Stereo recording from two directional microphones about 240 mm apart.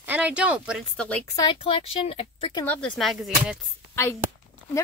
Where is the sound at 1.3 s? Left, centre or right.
Centre.